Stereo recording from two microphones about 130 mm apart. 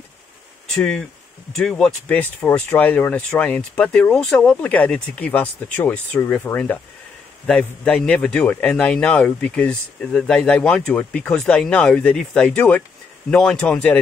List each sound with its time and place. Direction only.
0.7 s a man's voice: 5° left (ahead or behind)